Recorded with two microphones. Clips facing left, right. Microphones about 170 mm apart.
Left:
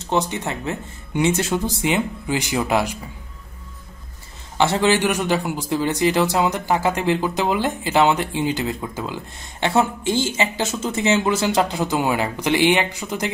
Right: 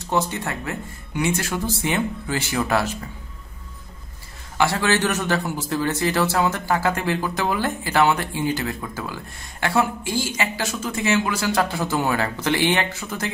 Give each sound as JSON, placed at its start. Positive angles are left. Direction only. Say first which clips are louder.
{"t": 0.0, "sound": "a man's voice", "louder": "left 1 dB", "side_deg": 20}
{"t": 4.6, "sound": "a man's voice", "louder": "left 3 dB", "side_deg": 20}